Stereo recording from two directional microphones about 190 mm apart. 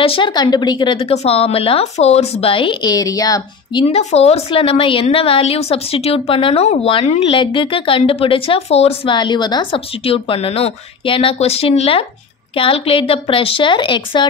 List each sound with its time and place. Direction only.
0.0 s a woman's voice: 25° left (ahead or behind)
3.8 s a woman's voice: 35° left (ahead or behind)